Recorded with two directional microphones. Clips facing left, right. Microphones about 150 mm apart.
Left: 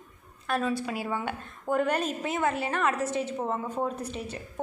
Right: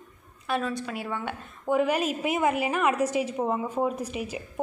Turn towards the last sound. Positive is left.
turn(degrees=-10)  # may be behind; listen again after turning